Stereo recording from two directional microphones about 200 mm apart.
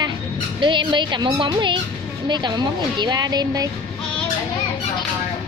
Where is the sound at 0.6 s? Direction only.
25° right (ahead or behind).